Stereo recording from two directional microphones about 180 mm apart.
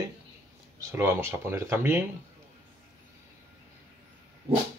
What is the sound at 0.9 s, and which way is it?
Speech, 15° right (ahead or behind).